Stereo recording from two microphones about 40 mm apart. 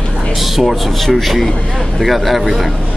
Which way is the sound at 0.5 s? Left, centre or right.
Centre.